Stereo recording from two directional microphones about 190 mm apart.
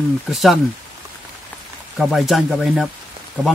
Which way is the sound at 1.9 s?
Centre (ahead or behind).